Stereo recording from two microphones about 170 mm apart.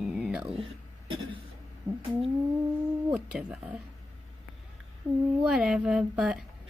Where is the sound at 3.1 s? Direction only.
5° right (ahead or behind).